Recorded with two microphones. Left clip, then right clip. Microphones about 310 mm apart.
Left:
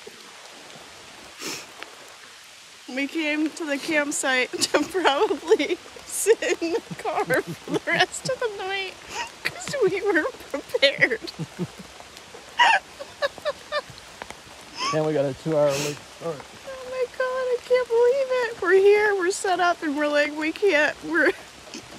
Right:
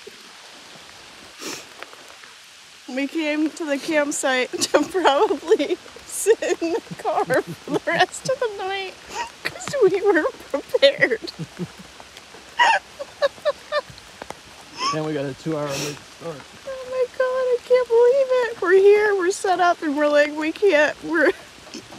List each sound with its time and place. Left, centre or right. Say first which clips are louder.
2.9 s a woman's voice: right 2 dB; centre
12.5 s a sound: right 1 dB; centre
15.0 s speech: left 3 dB; left
15.7 s a woman's voice: left 1 dB; centre
17.2 s speech: right 4 dB; centre